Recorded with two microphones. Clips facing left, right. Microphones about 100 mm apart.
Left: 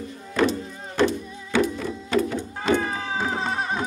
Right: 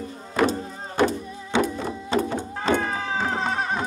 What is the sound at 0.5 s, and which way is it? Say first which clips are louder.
Music: even; 40° right (ahead or behind).